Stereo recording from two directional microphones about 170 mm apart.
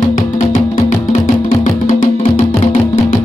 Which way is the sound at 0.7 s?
40° left (ahead or behind).